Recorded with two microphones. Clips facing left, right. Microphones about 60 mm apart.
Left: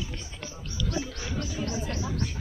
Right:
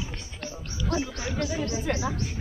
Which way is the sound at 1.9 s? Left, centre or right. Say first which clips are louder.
Right 5 dB; right.